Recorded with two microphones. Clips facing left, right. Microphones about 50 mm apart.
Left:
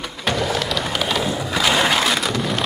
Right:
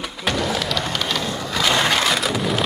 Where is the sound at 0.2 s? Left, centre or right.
Centre.